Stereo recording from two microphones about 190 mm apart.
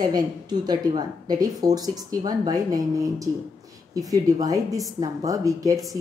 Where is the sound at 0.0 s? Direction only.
20° right (ahead or behind).